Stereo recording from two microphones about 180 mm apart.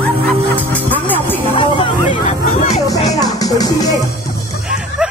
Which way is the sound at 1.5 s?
30° left (ahead or behind).